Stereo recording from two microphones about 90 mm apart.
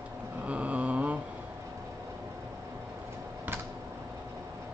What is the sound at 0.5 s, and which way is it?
Mantra, 15° right (ahead or behind).